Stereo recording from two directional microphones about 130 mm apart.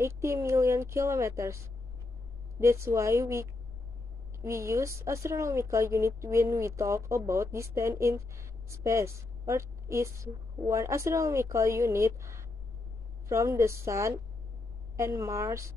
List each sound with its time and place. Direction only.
0.0 s speech: 20° right (ahead or behind)
2.6 s speech: 20° right (ahead or behind)